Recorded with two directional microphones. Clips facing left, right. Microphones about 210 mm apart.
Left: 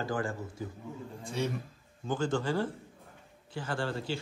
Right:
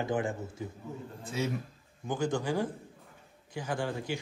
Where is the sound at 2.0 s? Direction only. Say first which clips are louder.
Even; 15° right (ahead or behind).